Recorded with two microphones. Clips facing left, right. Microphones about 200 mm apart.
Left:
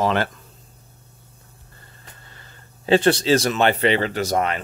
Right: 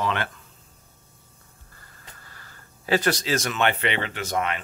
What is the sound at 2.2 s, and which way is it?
Speech, 25° left (ahead or behind).